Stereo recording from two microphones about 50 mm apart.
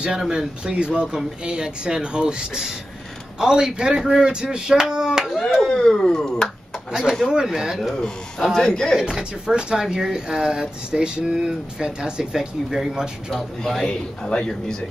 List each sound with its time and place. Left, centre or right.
0.0 s speech: centre
5.6 s dog: centre
7.0 s speech: centre
8.0 s dog: centre
9.0 s speech: centre
13.8 s dog: centre